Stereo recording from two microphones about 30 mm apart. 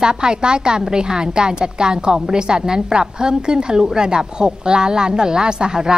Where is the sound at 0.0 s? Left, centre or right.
Right.